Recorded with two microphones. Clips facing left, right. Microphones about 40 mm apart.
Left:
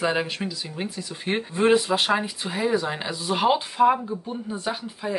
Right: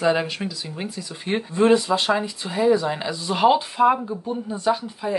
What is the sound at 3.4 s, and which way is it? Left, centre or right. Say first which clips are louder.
Speech: right 5 dB; centre.